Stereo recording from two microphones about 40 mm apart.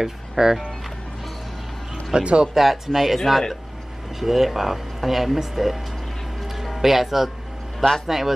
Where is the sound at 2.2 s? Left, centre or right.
Right.